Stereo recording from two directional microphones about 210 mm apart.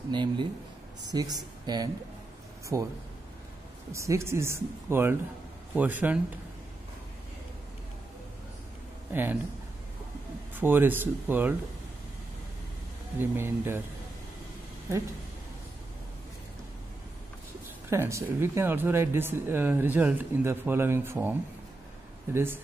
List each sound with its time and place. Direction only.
0.1 s speech: 20° right (ahead or behind)
3.9 s speech: 15° right (ahead or behind)
9.1 s speech: 10° right (ahead or behind)
10.5 s speech: 10° right (ahead or behind)
13.2 s speech: 10° right (ahead or behind)
17.8 s speech: 10° right (ahead or behind)